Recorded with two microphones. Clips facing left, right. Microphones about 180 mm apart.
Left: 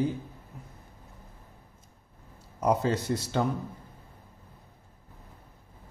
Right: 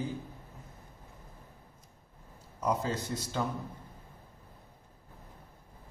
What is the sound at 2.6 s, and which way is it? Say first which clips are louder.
Speech: left 6 dB; 70° left (ahead or behind).